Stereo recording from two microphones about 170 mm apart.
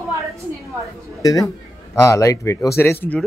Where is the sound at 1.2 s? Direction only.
20° left (ahead or behind).